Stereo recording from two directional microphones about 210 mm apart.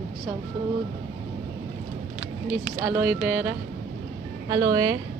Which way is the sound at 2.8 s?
5° right (ahead or behind).